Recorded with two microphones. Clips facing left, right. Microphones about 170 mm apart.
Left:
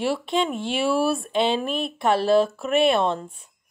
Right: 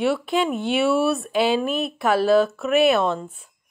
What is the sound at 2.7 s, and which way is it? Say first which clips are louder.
Speech: right 2 dB; 25° left (ahead or behind).